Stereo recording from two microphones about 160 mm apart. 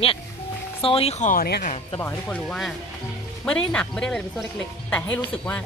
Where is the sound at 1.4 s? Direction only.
70° left (ahead or behind).